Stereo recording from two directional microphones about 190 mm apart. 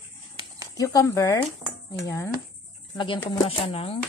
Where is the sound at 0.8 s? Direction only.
15° left (ahead or behind); by 4.0 s 30° left (ahead or behind).